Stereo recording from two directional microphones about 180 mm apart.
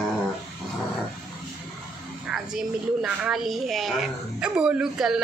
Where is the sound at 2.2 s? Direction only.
5° right (ahead or behind).